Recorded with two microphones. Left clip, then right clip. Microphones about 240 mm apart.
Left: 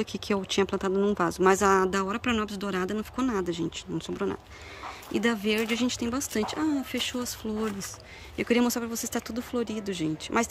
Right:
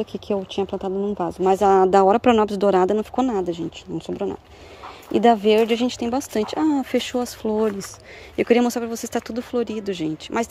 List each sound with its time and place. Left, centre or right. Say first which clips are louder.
0.0 s speech: right 5 dB; centre